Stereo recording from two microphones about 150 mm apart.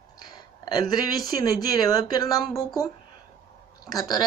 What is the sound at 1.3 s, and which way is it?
Speech, 85° right.